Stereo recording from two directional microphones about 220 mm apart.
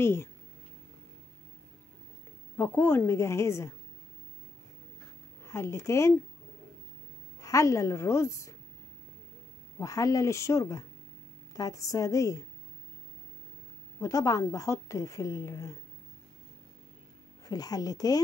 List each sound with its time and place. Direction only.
0.0 s a woman's voice: 10° left (ahead or behind)
2.5 s a woman's voice: 10° left (ahead or behind)
5.4 s speech: 10° left (ahead or behind)
7.4 s a woman's voice: 15° left (ahead or behind)
9.8 s a woman's voice: 15° left (ahead or behind)
13.9 s a woman's voice: 15° left (ahead or behind)
17.5 s a woman's voice: 15° left (ahead or behind)